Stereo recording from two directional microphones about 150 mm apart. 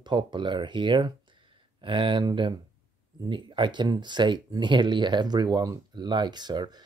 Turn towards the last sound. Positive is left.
turn(degrees=-30)  # may be behind; listen again after turning